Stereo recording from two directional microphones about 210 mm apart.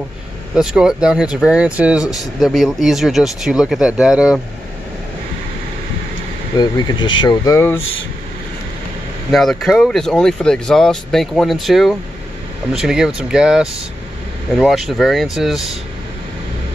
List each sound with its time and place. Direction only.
0.6 s speech: 5° right (ahead or behind)
6.6 s speech: 20° left (ahead or behind)
9.3 s speech: centre (ahead or behind)